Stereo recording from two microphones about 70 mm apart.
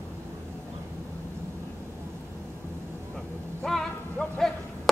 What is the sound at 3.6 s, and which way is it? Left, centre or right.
Music, centre.